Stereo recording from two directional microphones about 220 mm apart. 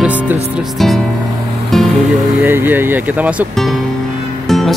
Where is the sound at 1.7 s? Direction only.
Centre (ahead or behind).